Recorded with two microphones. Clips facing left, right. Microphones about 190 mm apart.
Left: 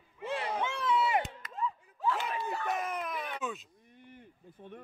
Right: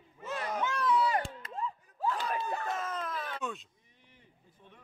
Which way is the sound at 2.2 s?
15° left (ahead or behind).